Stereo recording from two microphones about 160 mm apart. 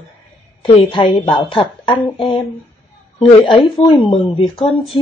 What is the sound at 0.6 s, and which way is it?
A woman's voice, 35° left (ahead or behind).